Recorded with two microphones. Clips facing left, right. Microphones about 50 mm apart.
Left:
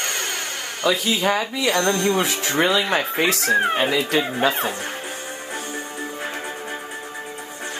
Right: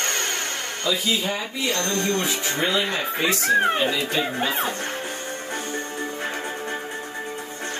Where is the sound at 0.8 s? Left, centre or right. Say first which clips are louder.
Left 5 dB; left.